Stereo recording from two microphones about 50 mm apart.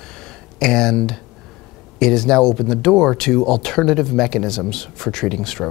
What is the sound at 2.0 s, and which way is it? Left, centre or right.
Speech, centre.